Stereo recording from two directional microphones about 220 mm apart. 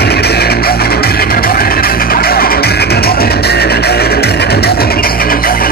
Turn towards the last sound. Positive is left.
turn(degrees=40)  # may be behind; listen again after turning